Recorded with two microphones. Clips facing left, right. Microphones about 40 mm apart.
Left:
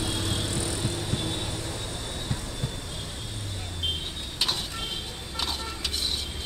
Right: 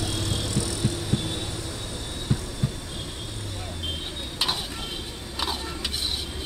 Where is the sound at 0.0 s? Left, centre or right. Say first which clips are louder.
Even; centre.